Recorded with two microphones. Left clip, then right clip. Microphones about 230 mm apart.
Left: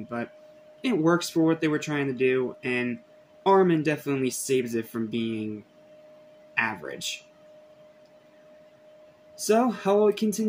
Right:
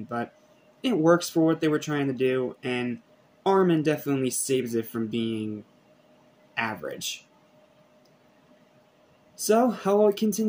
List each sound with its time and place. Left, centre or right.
0.7 s speech: centre
6.5 s speech: centre
9.5 s speech: centre